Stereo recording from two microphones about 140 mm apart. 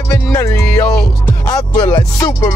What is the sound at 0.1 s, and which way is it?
Music, 25° left (ahead or behind).